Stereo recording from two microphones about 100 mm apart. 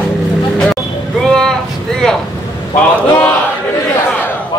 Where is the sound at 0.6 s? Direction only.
5° left (ahead or behind).